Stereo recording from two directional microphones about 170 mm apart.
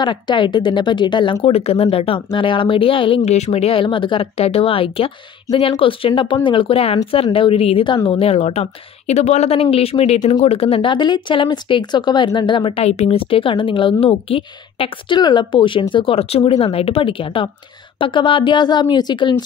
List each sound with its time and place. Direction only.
0.0 s speech: 30° left (ahead or behind)